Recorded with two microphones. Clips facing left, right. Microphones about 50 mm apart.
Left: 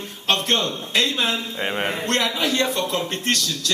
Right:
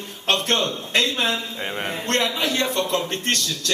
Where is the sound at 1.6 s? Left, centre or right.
Left.